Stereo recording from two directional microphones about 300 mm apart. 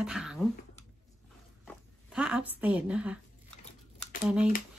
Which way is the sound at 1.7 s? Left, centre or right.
Centre.